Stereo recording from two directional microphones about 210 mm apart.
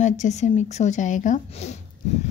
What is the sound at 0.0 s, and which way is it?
A woman's voice, 35° left (ahead or behind).